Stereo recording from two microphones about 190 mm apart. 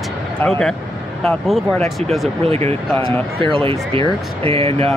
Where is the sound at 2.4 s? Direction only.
35° right (ahead or behind).